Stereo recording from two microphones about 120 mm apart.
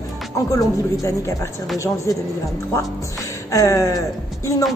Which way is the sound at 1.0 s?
25° left (ahead or behind).